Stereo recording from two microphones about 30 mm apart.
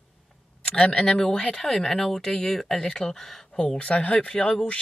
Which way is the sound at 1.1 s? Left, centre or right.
Centre.